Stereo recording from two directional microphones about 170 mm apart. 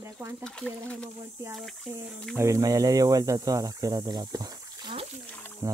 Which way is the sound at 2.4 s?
20° right (ahead or behind).